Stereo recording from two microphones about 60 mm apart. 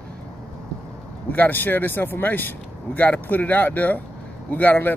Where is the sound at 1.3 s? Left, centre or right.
Left.